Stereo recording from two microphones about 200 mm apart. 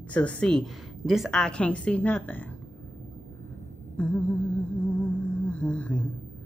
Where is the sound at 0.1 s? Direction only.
5° left (ahead or behind).